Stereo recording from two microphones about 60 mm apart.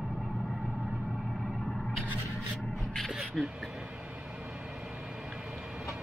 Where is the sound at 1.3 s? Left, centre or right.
Centre.